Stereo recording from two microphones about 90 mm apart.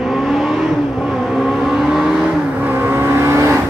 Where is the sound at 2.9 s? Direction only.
30° right (ahead or behind).